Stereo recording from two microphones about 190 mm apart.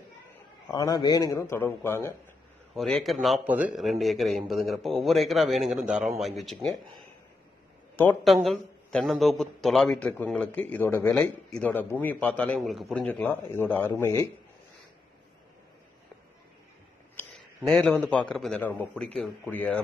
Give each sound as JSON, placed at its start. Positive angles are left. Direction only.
{"t": 0.7, "sound": "a man's voice", "side_deg": 20}
{"t": 2.7, "sound": "a man's voice", "side_deg": 0}
{"t": 8.0, "sound": "a man's voice", "side_deg": 5}
{"t": 17.6, "sound": "a man's voice", "side_deg": 5}